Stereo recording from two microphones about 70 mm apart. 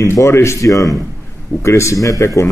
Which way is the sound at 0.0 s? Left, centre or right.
Left.